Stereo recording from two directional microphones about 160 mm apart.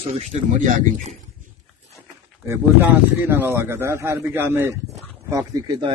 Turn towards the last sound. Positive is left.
turn(degrees=-25)  # may be behind; listen again after turning